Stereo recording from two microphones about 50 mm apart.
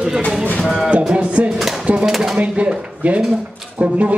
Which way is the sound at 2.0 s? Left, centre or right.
Centre.